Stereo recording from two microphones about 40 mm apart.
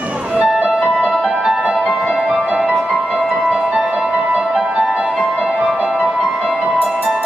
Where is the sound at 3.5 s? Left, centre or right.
Centre.